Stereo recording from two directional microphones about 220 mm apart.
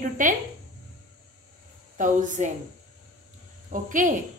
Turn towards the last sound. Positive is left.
turn(degrees=-35)  # may be behind; listen again after turning